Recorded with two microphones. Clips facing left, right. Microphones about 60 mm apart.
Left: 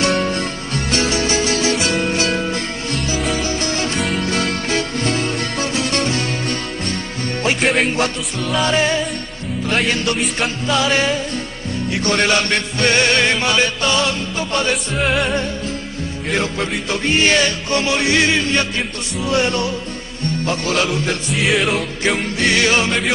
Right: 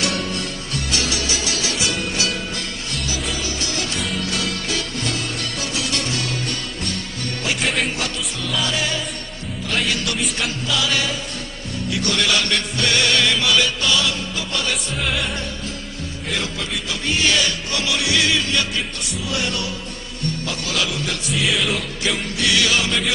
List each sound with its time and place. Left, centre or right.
0.0 s music: left
7.6 s music: centre
8.6 s music: left
10.7 s music: left
16.3 s music: left
21.3 s music: centre
22.4 s music: left